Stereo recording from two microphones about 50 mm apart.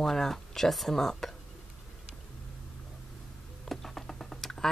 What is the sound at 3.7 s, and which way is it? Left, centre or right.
Typing, centre.